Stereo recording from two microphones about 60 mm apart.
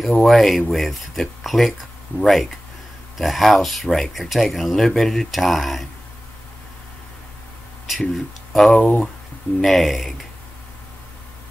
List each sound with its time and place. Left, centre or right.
0.0 s speech: centre
8.1 s speech: centre
8.7 s speech: left
9.6 s speech: centre